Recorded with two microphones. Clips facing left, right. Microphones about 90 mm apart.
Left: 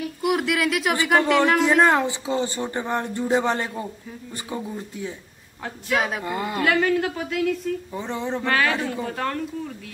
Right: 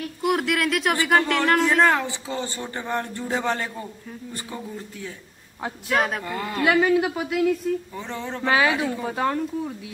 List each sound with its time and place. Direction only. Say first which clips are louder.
0.0 s speech: even; centre (ahead or behind)
1.6 s speech: left 2 dB; 15° left (ahead or behind)
5.6 s a man's voice: right 1 dB; centre (ahead or behind)
6.2 s speech: left 2 dB; 20° left (ahead or behind)
6.6 s speech: right 2 dB; 10° right (ahead or behind)
7.9 s speech: left 4 dB; 15° left (ahead or behind)
8.5 s speech: right 3 dB; 10° right (ahead or behind)